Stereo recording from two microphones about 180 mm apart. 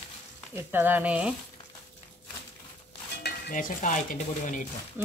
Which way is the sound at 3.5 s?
45° left (ahead or behind).